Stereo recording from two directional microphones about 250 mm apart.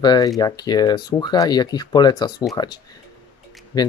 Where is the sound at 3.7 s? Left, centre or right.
Centre.